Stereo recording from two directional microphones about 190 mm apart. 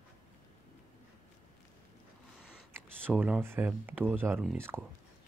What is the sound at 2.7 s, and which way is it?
Speech, 10° right (ahead or behind).